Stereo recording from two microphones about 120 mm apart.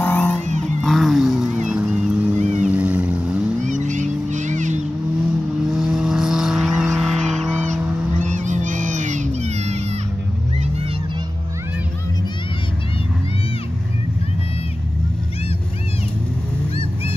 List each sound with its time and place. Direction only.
0.0 s vehicle: 15° left (ahead or behind)
0.7 s vehicle: centre (ahead or behind)
3.6 s vehicle: 90° right
5.7 s vehicle: 5° right (ahead or behind)
8.2 s a sound: 90° right